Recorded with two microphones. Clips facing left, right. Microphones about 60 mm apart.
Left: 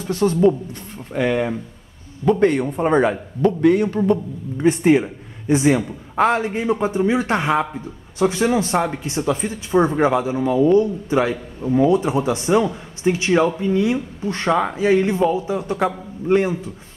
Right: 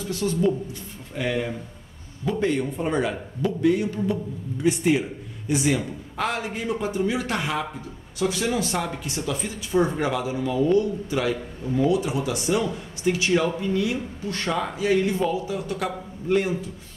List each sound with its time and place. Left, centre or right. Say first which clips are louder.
0.0 s a man's voice: left 7 dB; left
1.1 s a man's voice: left 7 dB; left
4.6 s speech: left 6 dB; left